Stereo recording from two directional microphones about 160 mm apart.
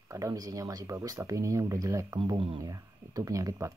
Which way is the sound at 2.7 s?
20° right (ahead or behind).